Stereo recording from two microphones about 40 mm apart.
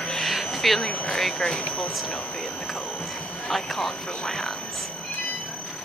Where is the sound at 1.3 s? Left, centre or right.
Left.